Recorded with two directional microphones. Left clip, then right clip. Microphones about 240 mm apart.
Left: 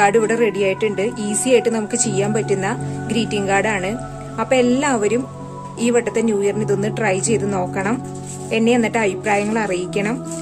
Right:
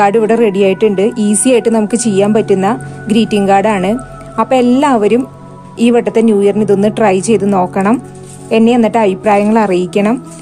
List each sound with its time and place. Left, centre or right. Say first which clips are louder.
0.0 s a woman's voice: right 6 dB; right